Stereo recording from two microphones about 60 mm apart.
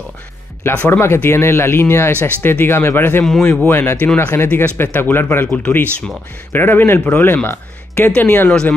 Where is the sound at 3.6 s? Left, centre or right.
Left.